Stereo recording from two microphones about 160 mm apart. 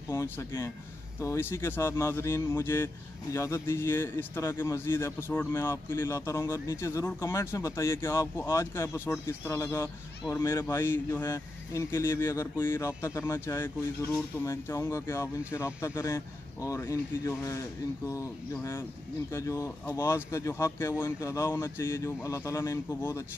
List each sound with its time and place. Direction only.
0.1 s speech: 15° left (ahead or behind)